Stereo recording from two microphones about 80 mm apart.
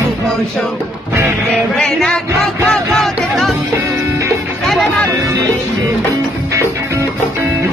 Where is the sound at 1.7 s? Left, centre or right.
Centre.